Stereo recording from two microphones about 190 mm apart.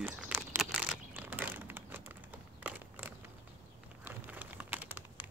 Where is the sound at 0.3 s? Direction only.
10° right (ahead or behind).